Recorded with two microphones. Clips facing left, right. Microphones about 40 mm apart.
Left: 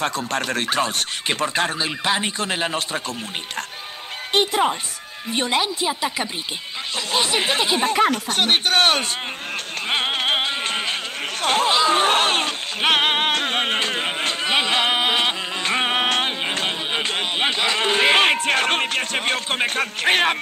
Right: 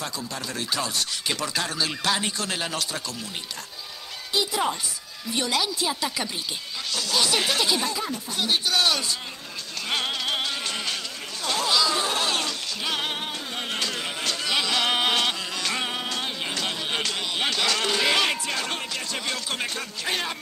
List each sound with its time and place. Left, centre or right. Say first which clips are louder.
0.0 s speech: left 9 dB; left
1.9 s speech: left 4 dB; left
4.3 s speech: left 6 dB; left
5.3 s speech: left 4 dB; left
7.9 s speech: left 11 dB; left
9.8 s music: left 5 dB; left
14.9 s music: left 3 dB; left
16.0 s music: left 9 dB; left